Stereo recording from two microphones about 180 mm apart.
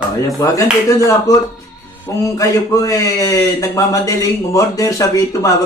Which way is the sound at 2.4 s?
20° left (ahead or behind).